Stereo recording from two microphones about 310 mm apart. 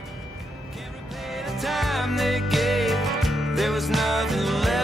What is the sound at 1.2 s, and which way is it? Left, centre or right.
Music, centre.